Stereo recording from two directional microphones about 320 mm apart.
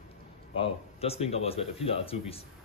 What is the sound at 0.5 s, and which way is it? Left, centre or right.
Speech, centre.